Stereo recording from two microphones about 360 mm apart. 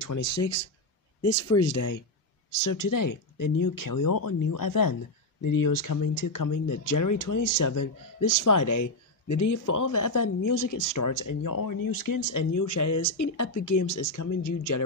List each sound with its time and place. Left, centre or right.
0.0 s speech: left